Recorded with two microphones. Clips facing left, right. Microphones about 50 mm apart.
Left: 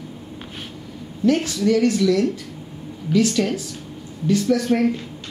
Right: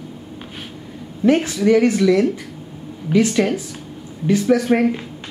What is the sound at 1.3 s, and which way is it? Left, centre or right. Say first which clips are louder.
Speech: right 4 dB; centre.